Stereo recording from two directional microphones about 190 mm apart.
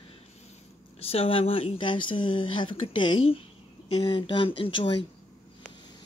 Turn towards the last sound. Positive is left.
turn(degrees=25)  # may be behind; listen again after turning